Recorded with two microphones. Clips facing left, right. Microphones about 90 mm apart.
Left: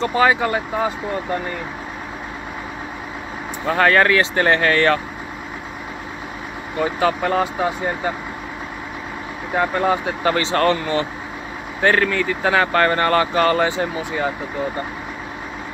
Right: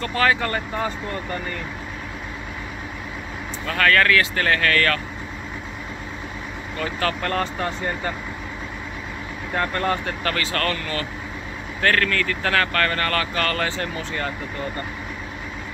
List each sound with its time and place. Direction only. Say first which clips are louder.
0.0 s speech: left 4 dB; 15° left (ahead or behind)
3.6 s speech: left 4 dB; 25° left (ahead or behind)
6.8 s speech: left 6 dB; 15° left (ahead or behind)
9.5 s speech: left 5 dB; 10° left (ahead or behind)
10.3 s speech: left 9 dB; 25° left (ahead or behind)